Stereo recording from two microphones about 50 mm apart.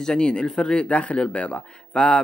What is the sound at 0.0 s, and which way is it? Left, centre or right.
A man's voice, centre.